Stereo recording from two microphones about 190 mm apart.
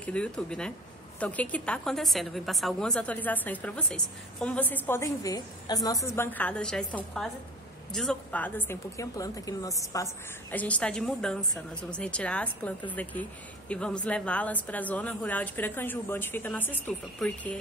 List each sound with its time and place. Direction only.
0.0 s a woman's voice: 5° left (ahead or behind)